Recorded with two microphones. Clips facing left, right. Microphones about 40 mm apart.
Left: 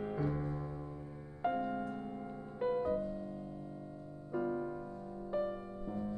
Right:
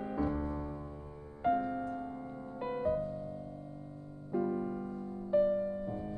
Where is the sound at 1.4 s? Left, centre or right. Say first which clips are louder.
Right 4 dB; centre.